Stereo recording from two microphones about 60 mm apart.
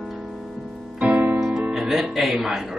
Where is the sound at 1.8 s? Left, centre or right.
Centre.